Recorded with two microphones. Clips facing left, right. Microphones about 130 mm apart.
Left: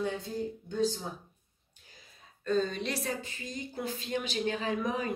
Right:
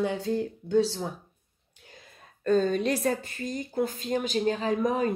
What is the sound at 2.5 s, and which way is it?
A woman's voice, 45° right (ahead or behind).